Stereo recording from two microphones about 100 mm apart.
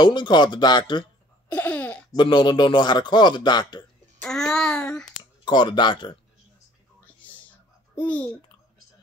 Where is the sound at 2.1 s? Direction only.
50° left (ahead or behind).